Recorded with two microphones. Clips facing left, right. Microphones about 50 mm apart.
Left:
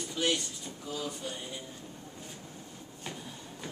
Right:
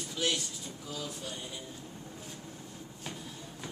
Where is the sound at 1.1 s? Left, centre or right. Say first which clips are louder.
Left 2 dB; centre.